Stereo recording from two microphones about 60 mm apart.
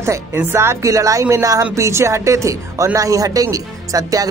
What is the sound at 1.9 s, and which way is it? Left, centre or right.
Speech, right.